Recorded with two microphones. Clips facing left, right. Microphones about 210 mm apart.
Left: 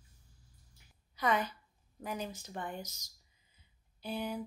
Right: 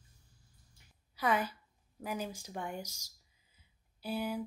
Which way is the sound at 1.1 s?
5° right (ahead or behind).